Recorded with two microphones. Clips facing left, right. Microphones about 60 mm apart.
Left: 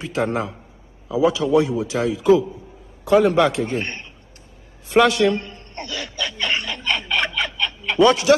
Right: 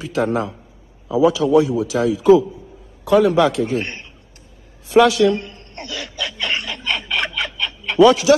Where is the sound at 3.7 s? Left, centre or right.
Centre.